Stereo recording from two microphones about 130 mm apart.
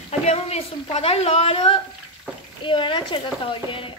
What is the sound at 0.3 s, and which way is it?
A woman's voice, 50° left (ahead or behind).